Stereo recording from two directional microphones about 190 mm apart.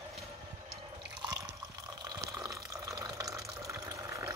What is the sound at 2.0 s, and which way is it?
Water, 20° right (ahead or behind).